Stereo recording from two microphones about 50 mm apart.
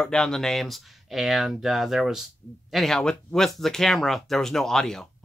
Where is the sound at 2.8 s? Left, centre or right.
Centre.